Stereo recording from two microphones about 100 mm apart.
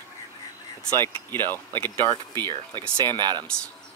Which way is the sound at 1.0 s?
25° left (ahead or behind).